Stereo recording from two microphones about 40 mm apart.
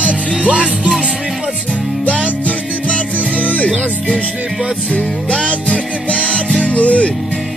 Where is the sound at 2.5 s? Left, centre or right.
Left.